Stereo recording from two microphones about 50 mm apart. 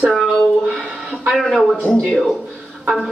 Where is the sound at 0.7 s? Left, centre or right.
Centre.